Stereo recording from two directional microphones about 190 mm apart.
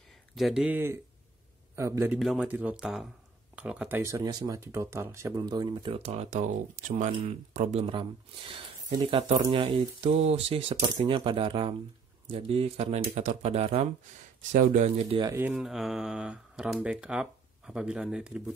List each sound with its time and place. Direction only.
0.1 s a man's voice: centre (ahead or behind)
2.1 s speech: 5° right (ahead or behind); by 15.3 s 30° right (ahead or behind)
15.5 s speech: centre (ahead or behind)